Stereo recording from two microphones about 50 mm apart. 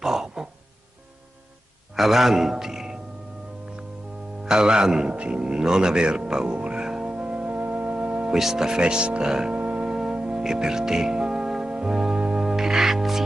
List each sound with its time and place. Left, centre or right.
0.0 s throat clearing: centre
2.0 s a man's voice: centre
4.5 s speech: centre
5.1 s music: right
8.4 s speech: centre
9.6 s music: right
12.4 s music: centre